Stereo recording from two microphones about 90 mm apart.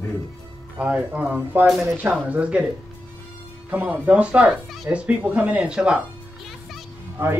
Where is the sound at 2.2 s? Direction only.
15° right (ahead or behind).